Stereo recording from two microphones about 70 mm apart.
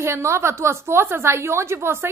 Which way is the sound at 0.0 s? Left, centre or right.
Right.